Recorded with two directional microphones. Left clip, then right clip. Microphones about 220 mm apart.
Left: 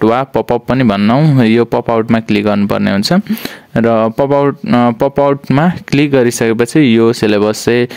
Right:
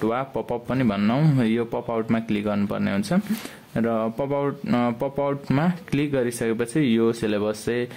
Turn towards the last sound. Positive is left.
turn(degrees=50)  # may be behind; listen again after turning